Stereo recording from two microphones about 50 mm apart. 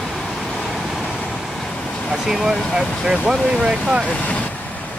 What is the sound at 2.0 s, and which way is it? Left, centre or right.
Speech, centre.